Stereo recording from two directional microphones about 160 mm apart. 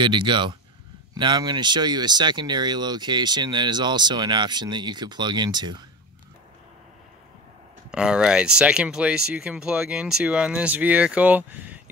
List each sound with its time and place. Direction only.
0.0 s speech: 30° right (ahead or behind)
7.9 s speech: 5° right (ahead or behind)